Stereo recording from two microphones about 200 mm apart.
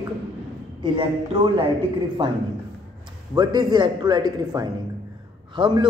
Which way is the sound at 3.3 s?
20° right (ahead or behind).